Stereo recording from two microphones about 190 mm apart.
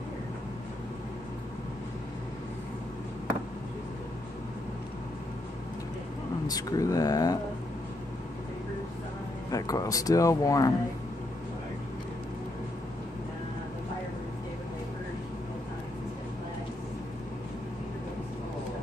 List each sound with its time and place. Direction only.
6.4 s speech: 20° left (ahead or behind)
9.5 s speech: 20° left (ahead or behind)